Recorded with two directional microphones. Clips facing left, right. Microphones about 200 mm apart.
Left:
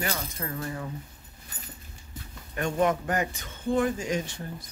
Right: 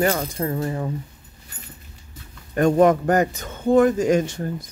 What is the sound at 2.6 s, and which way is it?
Speech, 45° right (ahead or behind).